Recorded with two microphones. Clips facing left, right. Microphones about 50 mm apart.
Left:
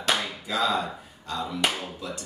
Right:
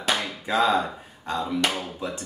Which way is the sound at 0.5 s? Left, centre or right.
Right.